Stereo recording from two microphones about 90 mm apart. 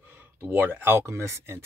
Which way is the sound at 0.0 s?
20° right (ahead or behind).